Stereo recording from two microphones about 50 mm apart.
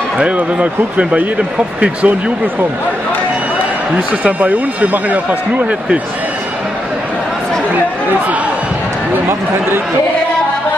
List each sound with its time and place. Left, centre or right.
0.2 s speech: right
4.2 s speech: right